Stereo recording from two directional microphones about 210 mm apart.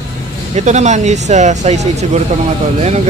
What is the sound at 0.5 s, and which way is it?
Speech, 35° right (ahead or behind).